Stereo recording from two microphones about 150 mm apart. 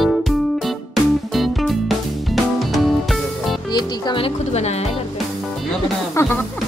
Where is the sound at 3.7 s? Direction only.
30° left (ahead or behind); by 4.9 s 45° left (ahead or behind).